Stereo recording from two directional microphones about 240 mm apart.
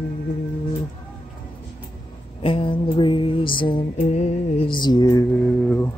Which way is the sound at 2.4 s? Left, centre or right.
Left.